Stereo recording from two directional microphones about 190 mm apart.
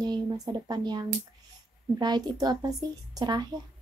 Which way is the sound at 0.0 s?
20° right (ahead or behind).